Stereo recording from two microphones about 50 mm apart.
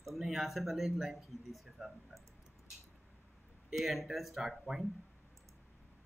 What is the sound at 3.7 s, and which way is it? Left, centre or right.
Speech, centre.